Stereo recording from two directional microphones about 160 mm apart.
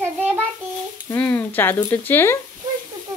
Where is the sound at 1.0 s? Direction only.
10° left (ahead or behind).